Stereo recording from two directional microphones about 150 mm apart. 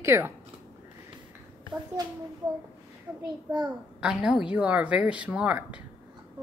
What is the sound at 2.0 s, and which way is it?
Speech, 25° right (ahead or behind).